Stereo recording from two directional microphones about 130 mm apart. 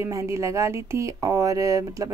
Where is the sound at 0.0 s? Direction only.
20° right (ahead or behind).